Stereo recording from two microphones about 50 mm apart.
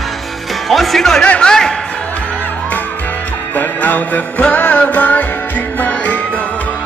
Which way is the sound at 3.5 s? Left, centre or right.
Left.